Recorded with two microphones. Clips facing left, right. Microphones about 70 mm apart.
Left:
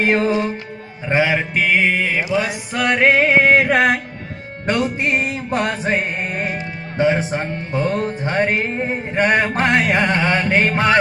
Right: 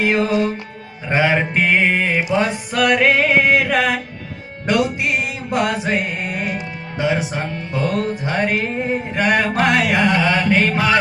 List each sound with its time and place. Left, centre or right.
0.0 s music: left
1.0 s mantra: centre
1.5 s music: centre
2.4 s music: left